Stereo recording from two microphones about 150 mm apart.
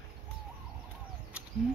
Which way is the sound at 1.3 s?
10° right (ahead or behind).